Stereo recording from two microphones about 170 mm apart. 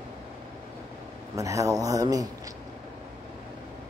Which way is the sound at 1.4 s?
20° right (ahead or behind).